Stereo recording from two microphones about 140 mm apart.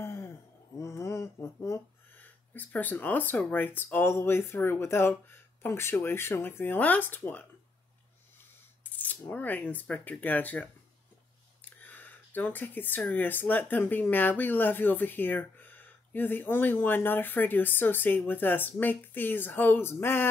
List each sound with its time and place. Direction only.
0.0 s a sound: 15° left (ahead or behind)
0.7 s speech: 20° left (ahead or behind)
8.9 s speech: 10° left (ahead or behind)
11.8 s speech: 15° left (ahead or behind)